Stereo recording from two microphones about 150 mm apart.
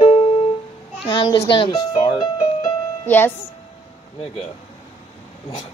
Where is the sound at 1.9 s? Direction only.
35° left (ahead or behind).